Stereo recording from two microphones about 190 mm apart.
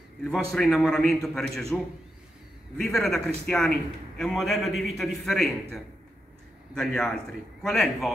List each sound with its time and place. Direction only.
0.2 s a man's voice: centre (ahead or behind)
2.9 s a man's voice: centre (ahead or behind)